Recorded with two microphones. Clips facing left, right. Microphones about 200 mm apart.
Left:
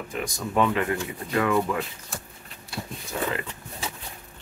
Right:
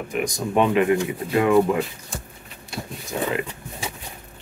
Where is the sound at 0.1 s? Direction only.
15° right (ahead or behind).